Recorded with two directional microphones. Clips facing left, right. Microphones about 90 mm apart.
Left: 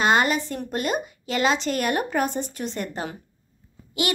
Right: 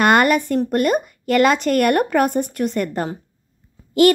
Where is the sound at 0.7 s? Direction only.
50° right (ahead or behind).